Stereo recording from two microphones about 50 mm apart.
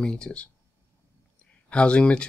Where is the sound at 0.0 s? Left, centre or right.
Centre.